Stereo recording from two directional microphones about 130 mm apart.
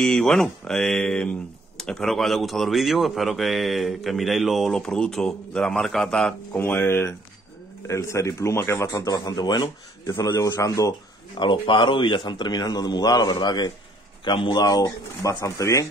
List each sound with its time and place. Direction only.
0.0 s a man's voice: 5° left (ahead or behind)
6.6 s a man's voice: 20° left (ahead or behind)
11.4 s speech: 40° left (ahead or behind)
14.6 s a man's voice: 25° left (ahead or behind)